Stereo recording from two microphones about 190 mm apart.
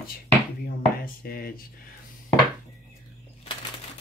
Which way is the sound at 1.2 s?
55° left (ahead or behind).